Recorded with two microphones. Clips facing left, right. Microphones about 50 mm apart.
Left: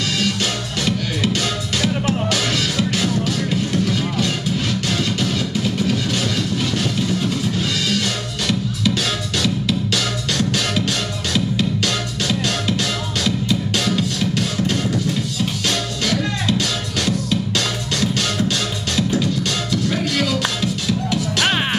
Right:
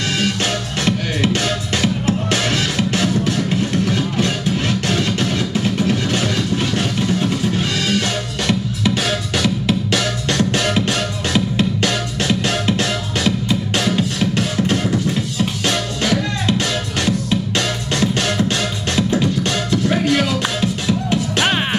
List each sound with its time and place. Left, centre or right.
0.8 s music: right